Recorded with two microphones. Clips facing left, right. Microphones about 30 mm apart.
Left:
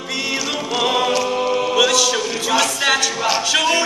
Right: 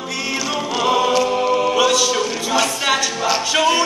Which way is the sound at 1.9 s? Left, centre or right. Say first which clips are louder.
Even; left.